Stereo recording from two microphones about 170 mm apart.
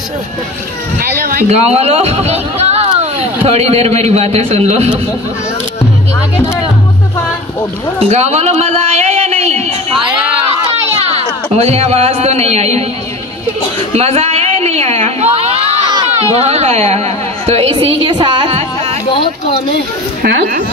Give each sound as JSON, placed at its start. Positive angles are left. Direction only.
{"t": 1.5, "sound": "speech", "side_deg": -40}
{"t": 8.1, "sound": "a sound", "side_deg": -40}
{"t": 11.5, "sound": "speech", "side_deg": -40}
{"t": 13.9, "sound": "speech", "side_deg": -40}
{"t": 15.9, "sound": "a sound", "side_deg": -25}
{"t": 16.3, "sound": "speech", "side_deg": -40}
{"t": 20.2, "sound": "speech", "side_deg": -65}